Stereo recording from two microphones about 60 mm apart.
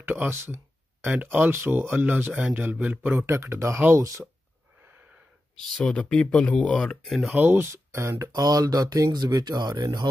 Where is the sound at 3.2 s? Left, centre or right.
Right.